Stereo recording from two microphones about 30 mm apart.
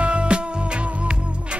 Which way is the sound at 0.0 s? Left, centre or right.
Right.